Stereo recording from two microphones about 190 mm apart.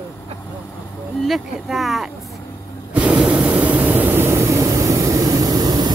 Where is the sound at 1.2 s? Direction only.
Centre (ahead or behind).